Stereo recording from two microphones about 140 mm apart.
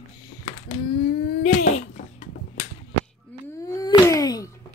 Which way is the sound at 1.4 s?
50° left (ahead or behind).